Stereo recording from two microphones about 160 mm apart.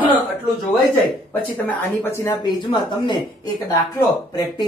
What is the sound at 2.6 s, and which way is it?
Speech, 30° left (ahead or behind).